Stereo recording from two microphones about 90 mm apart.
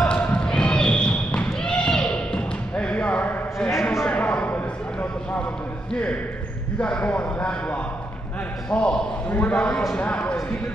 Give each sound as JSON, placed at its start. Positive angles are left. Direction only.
{"t": 0.0, "sound": "basketball bounce", "side_deg": 10}
{"t": 4.1, "sound": "a sound", "side_deg": 15}
{"t": 6.8, "sound": "speech", "side_deg": 15}